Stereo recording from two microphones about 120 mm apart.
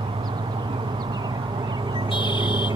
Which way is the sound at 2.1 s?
40° left (ahead or behind).